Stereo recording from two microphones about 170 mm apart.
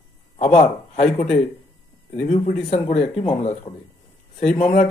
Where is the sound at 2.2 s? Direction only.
45° left (ahead or behind).